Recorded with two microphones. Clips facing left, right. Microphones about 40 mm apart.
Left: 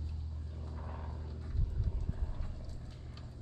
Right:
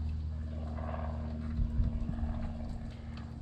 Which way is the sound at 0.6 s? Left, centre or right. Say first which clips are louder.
Right 7 dB; right.